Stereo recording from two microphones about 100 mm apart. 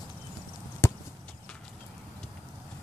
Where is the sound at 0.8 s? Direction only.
25° left (ahead or behind).